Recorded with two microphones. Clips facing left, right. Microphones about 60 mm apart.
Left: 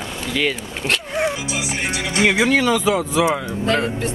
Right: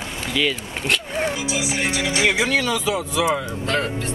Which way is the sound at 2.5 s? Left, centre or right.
Left.